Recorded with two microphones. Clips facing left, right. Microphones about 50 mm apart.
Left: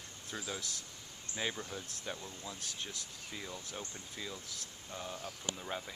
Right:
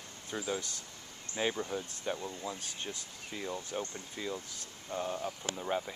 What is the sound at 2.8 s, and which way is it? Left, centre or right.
Speech, centre.